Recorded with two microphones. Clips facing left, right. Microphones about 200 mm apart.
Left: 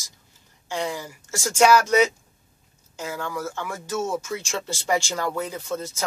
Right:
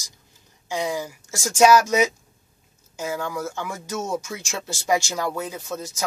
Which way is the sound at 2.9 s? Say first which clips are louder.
Right 2 dB; 10° right (ahead or behind).